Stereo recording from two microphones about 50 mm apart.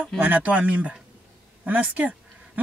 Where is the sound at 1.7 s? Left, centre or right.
Right.